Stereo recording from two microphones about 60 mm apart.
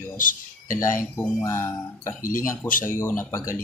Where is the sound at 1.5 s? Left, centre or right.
Left.